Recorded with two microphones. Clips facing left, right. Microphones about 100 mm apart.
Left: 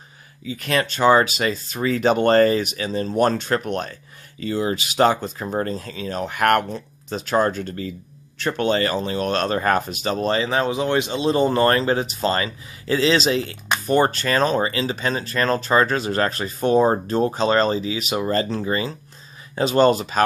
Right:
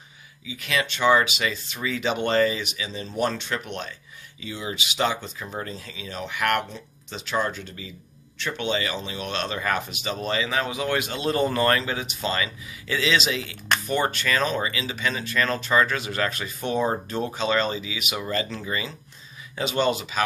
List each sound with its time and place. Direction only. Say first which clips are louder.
0.5 s speech: left 5 dB; 45° left (ahead or behind)